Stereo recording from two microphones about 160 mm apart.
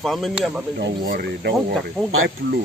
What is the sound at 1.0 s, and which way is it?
Speech, 80° right.